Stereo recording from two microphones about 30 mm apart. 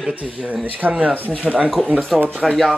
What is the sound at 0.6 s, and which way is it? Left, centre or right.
Speech, right.